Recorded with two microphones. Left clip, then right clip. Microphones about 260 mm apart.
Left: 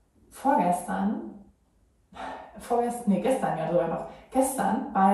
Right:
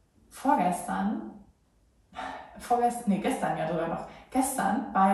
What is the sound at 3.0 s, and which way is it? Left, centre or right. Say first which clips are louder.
Speech: left 4 dB; centre.